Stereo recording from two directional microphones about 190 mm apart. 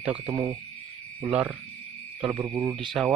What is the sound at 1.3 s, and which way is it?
Speech, 5° right (ahead or behind).